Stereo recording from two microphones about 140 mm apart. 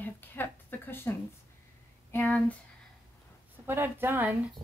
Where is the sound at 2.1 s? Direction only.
10° left (ahead or behind).